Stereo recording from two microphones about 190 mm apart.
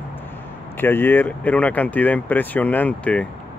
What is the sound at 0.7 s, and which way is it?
Speech, 10° left (ahead or behind).